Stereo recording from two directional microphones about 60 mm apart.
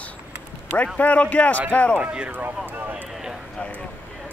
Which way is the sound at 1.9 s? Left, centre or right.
Right.